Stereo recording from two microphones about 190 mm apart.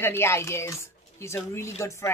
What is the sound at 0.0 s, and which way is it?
Speech, 10° left (ahead or behind).